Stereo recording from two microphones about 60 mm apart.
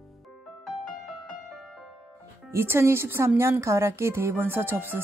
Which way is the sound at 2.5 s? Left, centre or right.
Right.